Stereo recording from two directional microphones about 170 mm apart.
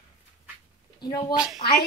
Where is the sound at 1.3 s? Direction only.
5° right (ahead or behind).